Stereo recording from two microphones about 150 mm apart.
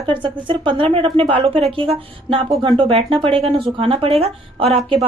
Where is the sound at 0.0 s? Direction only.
35° right (ahead or behind).